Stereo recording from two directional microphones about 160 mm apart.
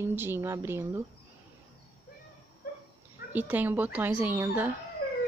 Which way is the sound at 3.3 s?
10° right (ahead or behind).